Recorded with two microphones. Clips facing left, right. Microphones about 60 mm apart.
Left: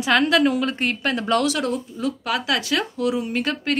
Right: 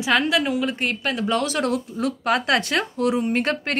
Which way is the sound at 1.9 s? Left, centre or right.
Right.